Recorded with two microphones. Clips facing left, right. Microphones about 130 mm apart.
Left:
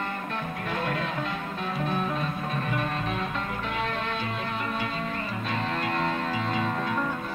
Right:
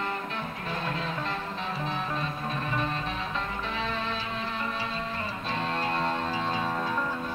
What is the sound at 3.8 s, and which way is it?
Music, 55° left (ahead or behind).